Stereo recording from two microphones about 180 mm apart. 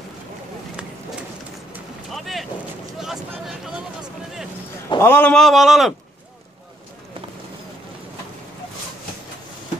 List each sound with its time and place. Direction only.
2.1 s boat: centre (ahead or behind)
3.0 s a sound: centre (ahead or behind)
4.8 s a man's voice: 15° left (ahead or behind); by 5.9 s centre (ahead or behind)